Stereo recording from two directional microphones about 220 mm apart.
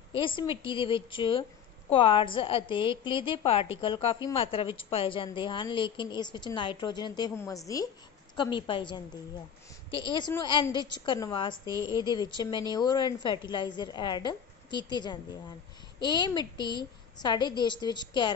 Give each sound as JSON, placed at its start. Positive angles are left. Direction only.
{"t": 0.2, "sound": "a woman's voice", "side_deg": 25}